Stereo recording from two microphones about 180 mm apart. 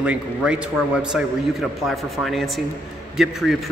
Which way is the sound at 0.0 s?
5° right (ahead or behind).